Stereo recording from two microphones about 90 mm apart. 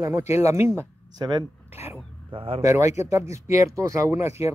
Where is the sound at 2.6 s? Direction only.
35° right (ahead or behind).